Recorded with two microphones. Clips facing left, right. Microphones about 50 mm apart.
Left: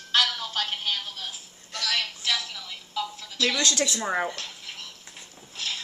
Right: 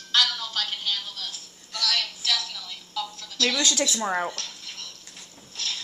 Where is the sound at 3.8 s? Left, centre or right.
Centre.